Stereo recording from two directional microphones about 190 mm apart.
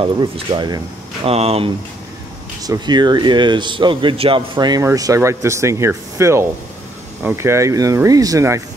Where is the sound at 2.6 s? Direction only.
20° right (ahead or behind).